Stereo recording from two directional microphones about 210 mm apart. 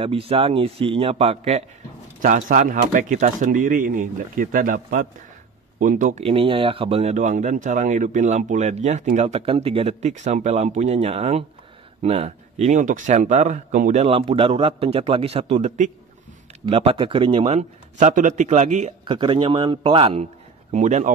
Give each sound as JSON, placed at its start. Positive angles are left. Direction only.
{"t": 0.0, "sound": "speech", "side_deg": -25}
{"t": 2.2, "sound": "speech", "side_deg": -40}
{"t": 6.2, "sound": "speech", "side_deg": -25}